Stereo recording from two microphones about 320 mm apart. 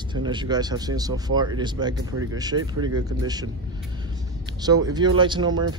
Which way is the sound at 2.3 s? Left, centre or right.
Centre.